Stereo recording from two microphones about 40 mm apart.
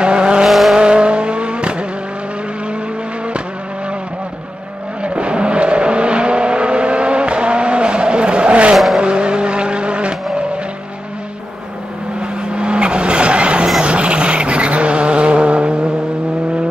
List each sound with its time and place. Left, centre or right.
0.0 s vehicle: right
0.5 s vehicle: centre
0.7 s vehicle: right
5.0 s vehicle: right
12.4 s vehicle: right